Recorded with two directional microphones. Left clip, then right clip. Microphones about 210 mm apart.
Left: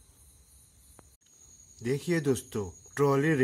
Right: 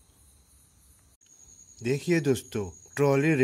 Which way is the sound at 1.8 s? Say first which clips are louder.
Right 3 dB; 20° right (ahead or behind).